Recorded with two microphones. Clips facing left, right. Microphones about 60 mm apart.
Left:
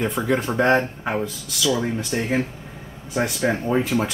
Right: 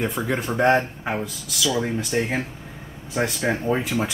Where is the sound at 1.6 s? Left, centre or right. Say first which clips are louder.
Left 1 dB; centre.